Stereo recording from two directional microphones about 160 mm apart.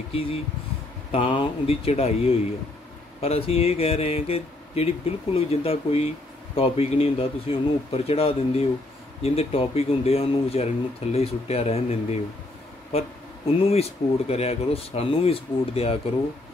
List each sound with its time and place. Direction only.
0.1 s speech: 35° left (ahead or behind)
13.7 s speech: 40° left (ahead or behind)